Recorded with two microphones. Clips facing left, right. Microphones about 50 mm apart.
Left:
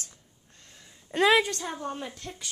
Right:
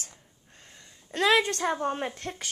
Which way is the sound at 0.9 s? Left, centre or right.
Centre.